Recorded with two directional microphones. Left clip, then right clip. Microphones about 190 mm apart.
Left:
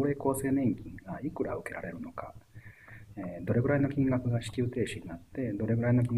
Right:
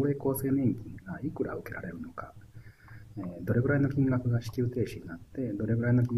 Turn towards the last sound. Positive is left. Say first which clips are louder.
# even
turn(degrees=5)  # may be behind; listen again after turning